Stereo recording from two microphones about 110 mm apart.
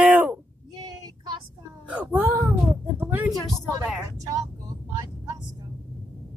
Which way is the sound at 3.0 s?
20° right (ahead or behind).